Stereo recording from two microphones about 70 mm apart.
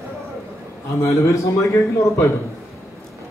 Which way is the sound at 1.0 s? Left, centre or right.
Left.